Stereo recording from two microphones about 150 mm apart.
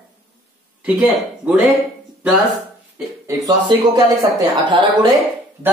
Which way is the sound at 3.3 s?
25° right (ahead or behind).